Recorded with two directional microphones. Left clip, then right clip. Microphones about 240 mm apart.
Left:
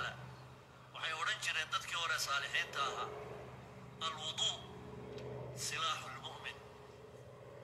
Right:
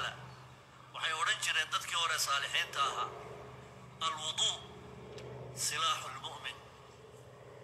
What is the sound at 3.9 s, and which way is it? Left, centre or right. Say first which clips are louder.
Telephone: right 5 dB; right.